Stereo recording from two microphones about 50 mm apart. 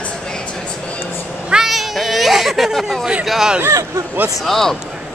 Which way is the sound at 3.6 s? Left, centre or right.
Right.